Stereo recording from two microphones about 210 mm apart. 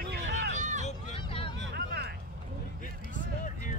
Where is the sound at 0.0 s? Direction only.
50° right (ahead or behind).